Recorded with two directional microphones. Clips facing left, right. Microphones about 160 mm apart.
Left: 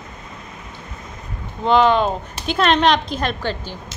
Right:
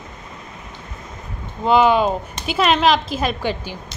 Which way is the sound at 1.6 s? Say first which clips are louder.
Even; 5° right (ahead or behind).